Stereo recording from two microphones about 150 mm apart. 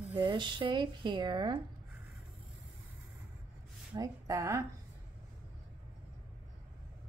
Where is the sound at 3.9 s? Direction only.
25° right (ahead or behind).